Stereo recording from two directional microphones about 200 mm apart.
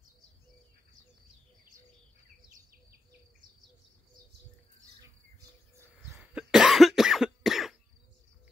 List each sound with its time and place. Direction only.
6.0 s cough: centre (ahead or behind)